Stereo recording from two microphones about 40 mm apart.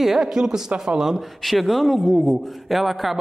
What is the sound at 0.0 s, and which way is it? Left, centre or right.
A man's voice, centre.